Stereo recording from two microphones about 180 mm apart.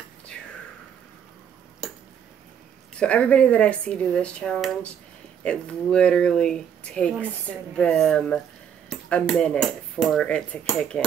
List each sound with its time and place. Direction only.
3.0 s speech: 5° left (ahead or behind)